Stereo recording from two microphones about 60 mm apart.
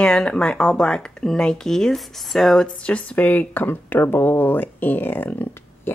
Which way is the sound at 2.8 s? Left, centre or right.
Centre.